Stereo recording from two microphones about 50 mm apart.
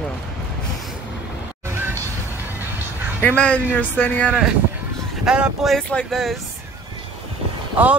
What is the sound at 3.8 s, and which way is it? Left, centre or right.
Speech, left.